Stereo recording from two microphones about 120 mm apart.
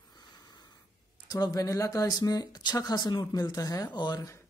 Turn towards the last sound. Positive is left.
turn(degrees=35)  # may be behind; listen again after turning